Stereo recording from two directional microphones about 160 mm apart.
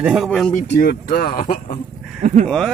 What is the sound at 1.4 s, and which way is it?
Speech, 55° left (ahead or behind).